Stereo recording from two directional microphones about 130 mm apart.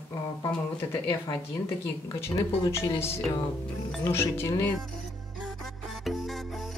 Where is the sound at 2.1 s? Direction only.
25° left (ahead or behind).